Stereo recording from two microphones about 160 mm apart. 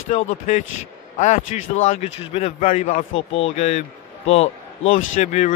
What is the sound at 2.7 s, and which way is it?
A man's voice, 50° left (ahead or behind).